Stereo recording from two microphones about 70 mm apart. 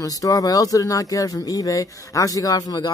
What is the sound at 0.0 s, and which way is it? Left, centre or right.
Speech, left.